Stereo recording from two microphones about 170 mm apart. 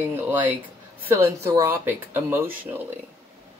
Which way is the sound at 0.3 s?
10° right (ahead or behind).